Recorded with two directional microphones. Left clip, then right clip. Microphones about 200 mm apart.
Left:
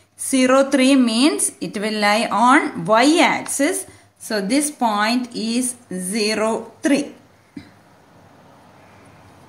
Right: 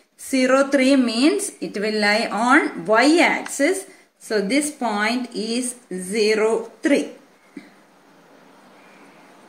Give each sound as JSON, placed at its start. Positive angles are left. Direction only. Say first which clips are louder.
{"t": 0.2, "sound": "a woman's voice", "louder": "left 2 dB", "side_deg": 55}